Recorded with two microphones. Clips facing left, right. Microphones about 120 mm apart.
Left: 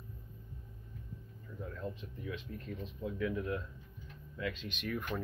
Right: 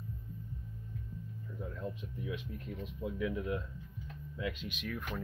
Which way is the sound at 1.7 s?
15° right (ahead or behind).